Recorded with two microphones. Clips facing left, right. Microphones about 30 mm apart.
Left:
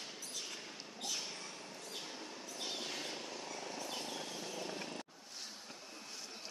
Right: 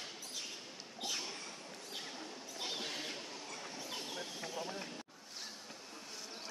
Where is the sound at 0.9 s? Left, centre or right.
Centre.